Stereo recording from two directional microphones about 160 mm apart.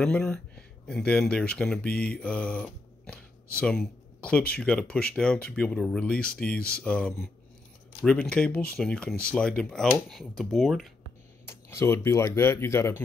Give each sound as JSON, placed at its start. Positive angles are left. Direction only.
{"t": 0.0, "sound": "speech", "side_deg": 5}
{"t": 2.0, "sound": "mantra", "side_deg": 5}
{"t": 3.5, "sound": "speech", "side_deg": 5}
{"t": 11.4, "sound": "speech", "side_deg": 15}